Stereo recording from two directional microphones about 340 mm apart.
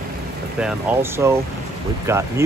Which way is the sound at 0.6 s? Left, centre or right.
Centre.